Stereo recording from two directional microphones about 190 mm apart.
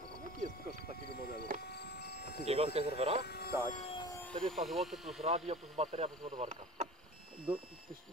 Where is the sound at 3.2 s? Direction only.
55° left (ahead or behind).